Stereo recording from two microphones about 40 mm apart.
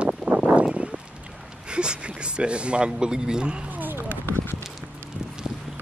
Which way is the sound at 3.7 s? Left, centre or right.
Right.